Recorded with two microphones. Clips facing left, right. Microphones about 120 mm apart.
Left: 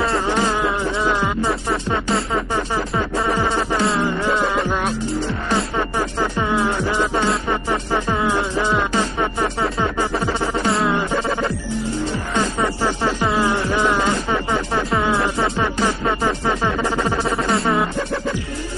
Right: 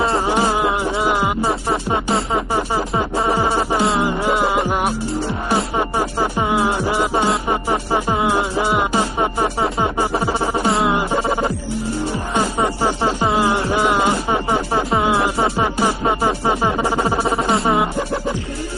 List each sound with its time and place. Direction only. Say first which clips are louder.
0.3 s music: right 2 dB; 15° right (ahead or behind)
3.4 s insect: right 2 dB; 15° right (ahead or behind)
4.0 s music: right 2 dB; 20° right (ahead or behind)
10.7 s music: right 1 dB; 25° right (ahead or behind)
11.0 s music: right 2 dB; 15° right (ahead or behind)
17.1 s music: right 2 dB; 30° right (ahead or behind)